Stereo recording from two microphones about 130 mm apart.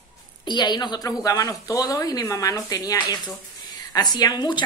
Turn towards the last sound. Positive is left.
turn(degrees=30)  # may be behind; listen again after turning